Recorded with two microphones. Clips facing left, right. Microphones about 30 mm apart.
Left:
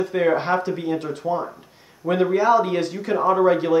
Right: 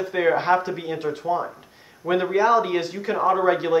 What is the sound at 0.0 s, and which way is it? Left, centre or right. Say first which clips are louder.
A man's voice: left 1 dB; centre.